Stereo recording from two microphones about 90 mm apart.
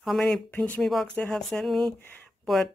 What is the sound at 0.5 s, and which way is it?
Speech, 15° left (ahead or behind).